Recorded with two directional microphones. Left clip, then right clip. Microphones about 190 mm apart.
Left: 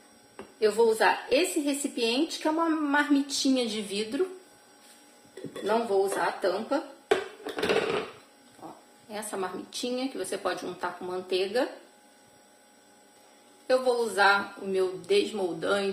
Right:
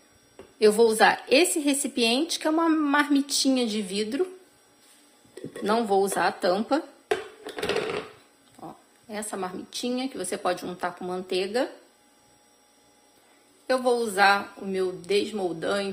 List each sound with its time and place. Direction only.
0.6 s a woman's voice: 50° right (ahead or behind); by 4.2 s 35° right (ahead or behind)
5.7 s a woman's voice: 55° right (ahead or behind)
9.1 s speech: 35° right (ahead or behind)
13.7 s speech: 35° right (ahead or behind)